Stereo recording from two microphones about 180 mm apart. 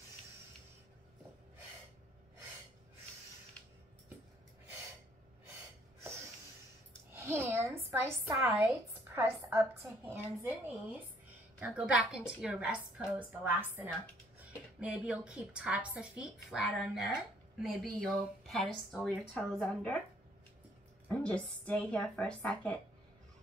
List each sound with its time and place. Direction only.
7.1 s a woman's voice: 15° right (ahead or behind); by 20.0 s 5° left (ahead or behind)
21.1 s speech: 5° left (ahead or behind)